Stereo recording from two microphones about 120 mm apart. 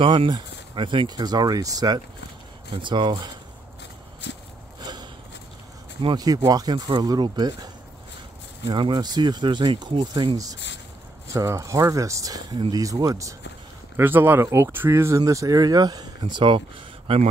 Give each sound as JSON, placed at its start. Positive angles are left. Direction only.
{"t": 0.0, "sound": "speech", "side_deg": -45}
{"t": 2.7, "sound": "speech", "side_deg": -40}
{"t": 6.0, "sound": "speech", "side_deg": -35}
{"t": 11.3, "sound": "speech", "side_deg": -25}
{"t": 13.9, "sound": "speech", "side_deg": -15}